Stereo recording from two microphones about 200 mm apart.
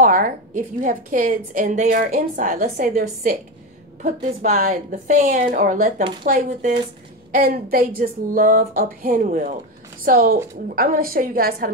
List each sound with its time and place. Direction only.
0.0 s a woman's voice: 45° right (ahead or behind)